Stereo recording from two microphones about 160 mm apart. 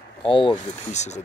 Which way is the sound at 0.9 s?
45° left (ahead or behind).